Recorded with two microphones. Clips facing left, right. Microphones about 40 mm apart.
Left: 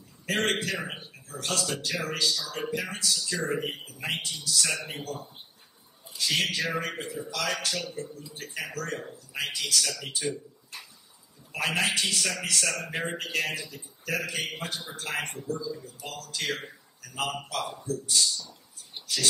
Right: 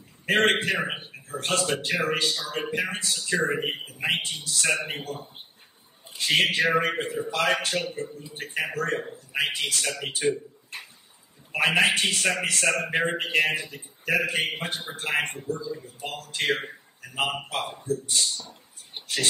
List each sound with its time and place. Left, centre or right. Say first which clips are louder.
0.3 s a man's voice: right 6 dB; right